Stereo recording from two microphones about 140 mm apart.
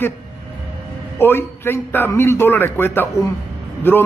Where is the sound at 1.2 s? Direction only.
15° left (ahead or behind).